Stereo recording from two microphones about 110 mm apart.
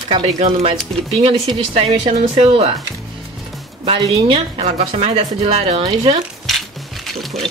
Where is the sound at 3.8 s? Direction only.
60° right (ahead or behind).